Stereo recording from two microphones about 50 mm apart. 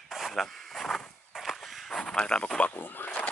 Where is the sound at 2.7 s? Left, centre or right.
Left.